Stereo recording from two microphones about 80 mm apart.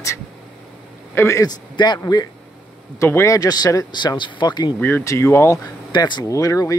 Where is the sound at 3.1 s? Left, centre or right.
Left.